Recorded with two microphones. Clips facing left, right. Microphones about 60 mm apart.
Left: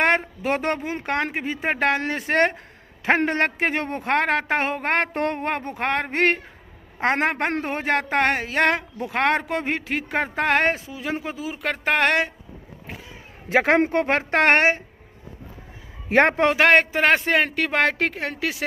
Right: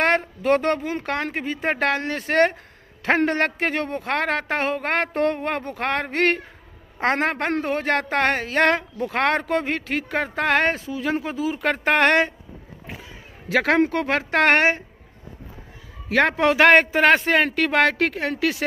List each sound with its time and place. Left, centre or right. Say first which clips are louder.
0.0 s a woman's voice: even; left
11.6 s speech: right 2 dB; centre
13.5 s a woman's voice: left 1 dB; left
16.1 s a woman's voice: left 1 dB; left
16.5 s speech: right 6 dB; centre